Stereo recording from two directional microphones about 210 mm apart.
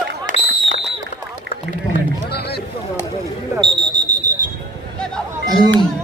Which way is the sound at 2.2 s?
50° left (ahead or behind).